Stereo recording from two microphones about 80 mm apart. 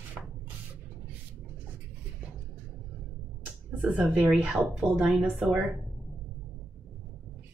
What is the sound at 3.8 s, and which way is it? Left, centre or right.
Speech, centre.